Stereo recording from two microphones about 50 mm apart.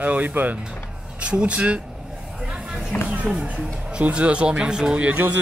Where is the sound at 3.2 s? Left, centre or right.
Centre.